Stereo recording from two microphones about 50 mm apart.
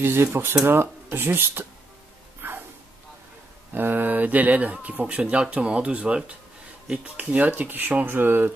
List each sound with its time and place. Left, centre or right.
0.0 s speech: right
2.4 s a sound: right
3.7 s speech: right